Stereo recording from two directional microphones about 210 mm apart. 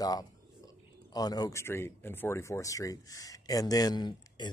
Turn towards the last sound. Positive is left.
turn(degrees=20)  # may be behind; listen again after turning